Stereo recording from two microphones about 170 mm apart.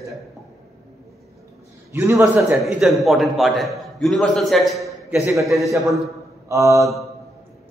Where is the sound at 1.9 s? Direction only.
20° right (ahead or behind).